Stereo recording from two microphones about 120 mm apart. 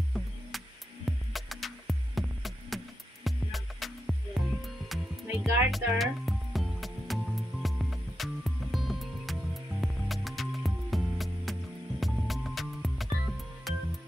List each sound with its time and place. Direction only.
1.0 s music: centre (ahead or behind)